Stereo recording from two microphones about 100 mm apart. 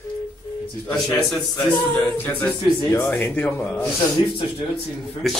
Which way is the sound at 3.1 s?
10° left (ahead or behind).